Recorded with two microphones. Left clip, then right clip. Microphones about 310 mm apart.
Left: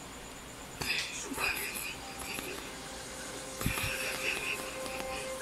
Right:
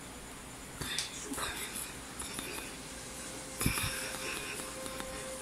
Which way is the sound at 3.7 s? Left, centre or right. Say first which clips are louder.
Left 3 dB; centre.